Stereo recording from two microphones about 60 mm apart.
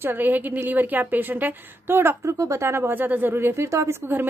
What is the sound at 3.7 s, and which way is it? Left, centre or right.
Speech, right.